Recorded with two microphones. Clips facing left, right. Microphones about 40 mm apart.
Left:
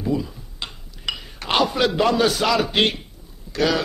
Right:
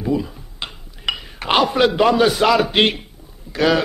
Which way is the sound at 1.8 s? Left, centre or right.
Centre.